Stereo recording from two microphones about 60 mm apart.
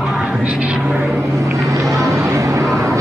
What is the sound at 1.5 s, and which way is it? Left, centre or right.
Vehicle, right.